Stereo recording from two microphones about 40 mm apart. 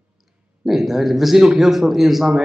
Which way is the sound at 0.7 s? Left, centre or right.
Centre.